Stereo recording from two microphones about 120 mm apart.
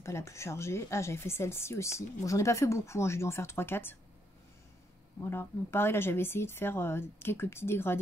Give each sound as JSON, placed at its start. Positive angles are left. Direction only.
{"t": 0.0, "sound": "a woman's voice", "side_deg": 25}
{"t": 5.2, "sound": "a woman's voice", "side_deg": 20}